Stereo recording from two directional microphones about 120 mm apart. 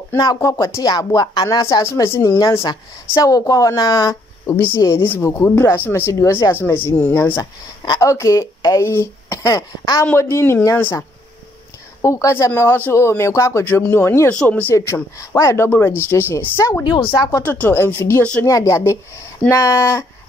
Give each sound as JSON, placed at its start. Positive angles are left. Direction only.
{"t": 0.1, "sound": "speech", "side_deg": 30}
{"t": 1.9, "sound": "speech", "side_deg": 20}
{"t": 5.0, "sound": "speech", "side_deg": 20}
{"t": 14.3, "sound": "speech", "side_deg": 10}
{"t": 15.1, "sound": "speech", "side_deg": 25}